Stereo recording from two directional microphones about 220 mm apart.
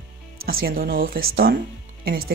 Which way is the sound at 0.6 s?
40° right (ahead or behind).